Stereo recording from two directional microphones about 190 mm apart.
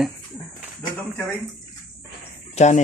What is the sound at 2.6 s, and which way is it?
Speech, 35° left (ahead or behind).